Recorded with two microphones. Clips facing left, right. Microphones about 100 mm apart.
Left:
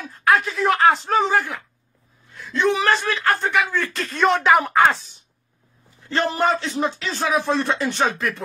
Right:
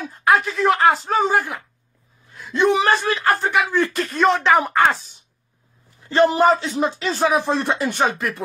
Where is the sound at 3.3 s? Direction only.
5° right (ahead or behind).